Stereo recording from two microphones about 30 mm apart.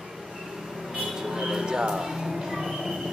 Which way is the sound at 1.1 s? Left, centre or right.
Centre.